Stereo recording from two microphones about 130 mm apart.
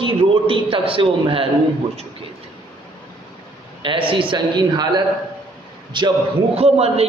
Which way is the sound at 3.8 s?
40° right (ahead or behind).